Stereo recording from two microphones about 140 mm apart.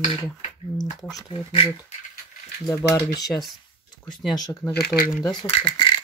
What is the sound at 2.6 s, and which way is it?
Speech, 25° left (ahead or behind).